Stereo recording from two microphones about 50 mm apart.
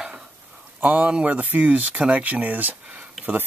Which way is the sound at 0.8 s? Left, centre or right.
Right.